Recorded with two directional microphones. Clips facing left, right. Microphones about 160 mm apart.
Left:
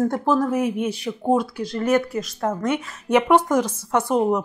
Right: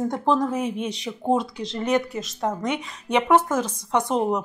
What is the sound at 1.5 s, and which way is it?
Speech, 20° right (ahead or behind).